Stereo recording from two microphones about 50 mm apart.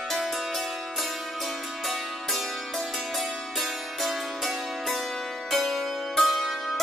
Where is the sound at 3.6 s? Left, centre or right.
Centre.